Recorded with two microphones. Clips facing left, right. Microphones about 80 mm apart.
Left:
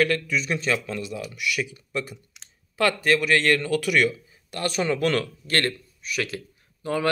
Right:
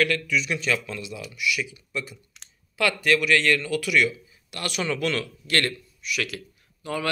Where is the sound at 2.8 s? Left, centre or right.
Left.